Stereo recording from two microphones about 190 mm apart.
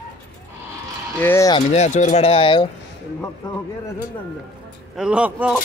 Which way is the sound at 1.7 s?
35° left (ahead or behind).